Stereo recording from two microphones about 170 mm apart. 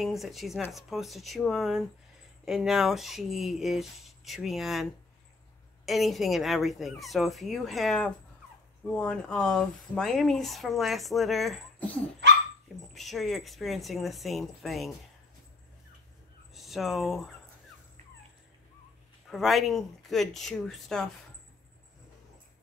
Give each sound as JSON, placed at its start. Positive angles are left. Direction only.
{"t": 0.0, "sound": "speech", "side_deg": 0}
{"t": 5.9, "sound": "speech", "side_deg": 0}
{"t": 16.5, "sound": "speech", "side_deg": 0}
{"t": 19.3, "sound": "speech", "side_deg": 0}